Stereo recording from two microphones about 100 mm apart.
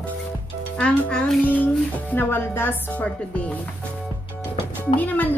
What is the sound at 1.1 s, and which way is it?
Speech, 5° left (ahead or behind).